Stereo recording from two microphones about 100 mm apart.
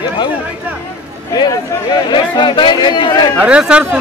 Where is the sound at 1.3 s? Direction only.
45° left (ahead or behind).